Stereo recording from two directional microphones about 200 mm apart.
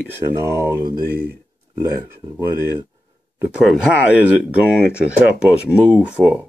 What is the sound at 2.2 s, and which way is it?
Speech, 20° right (ahead or behind).